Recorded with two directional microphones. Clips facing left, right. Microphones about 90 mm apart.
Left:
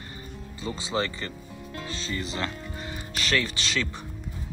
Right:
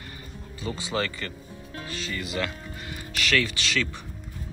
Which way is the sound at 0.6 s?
25° left (ahead or behind).